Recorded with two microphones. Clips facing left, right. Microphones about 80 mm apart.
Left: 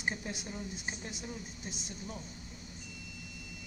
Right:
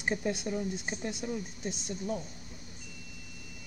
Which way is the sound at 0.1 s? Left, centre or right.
Right.